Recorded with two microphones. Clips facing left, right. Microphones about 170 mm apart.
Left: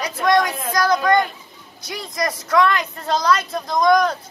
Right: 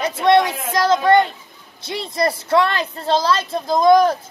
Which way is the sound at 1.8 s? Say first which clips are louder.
Right 4 dB; 25° right (ahead or behind).